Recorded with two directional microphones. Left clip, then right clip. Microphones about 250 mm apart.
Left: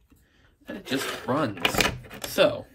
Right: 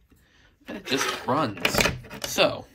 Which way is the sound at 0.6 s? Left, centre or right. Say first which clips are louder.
Right 3 dB; centre.